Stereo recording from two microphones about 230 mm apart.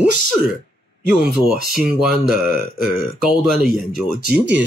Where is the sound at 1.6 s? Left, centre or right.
Centre.